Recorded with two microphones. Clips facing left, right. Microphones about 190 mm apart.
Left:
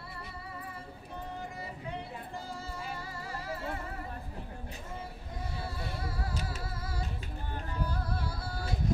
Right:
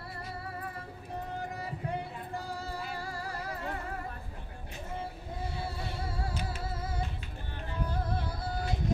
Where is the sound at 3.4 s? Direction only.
40° right (ahead or behind).